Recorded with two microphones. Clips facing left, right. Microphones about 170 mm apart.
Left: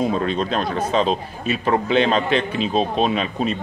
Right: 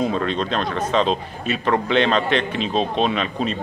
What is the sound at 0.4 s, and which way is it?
Speech, 45° left (ahead or behind).